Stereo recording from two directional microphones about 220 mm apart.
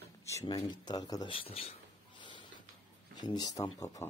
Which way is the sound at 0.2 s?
15° left (ahead or behind).